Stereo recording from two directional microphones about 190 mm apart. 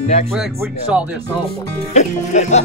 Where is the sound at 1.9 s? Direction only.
40° left (ahead or behind).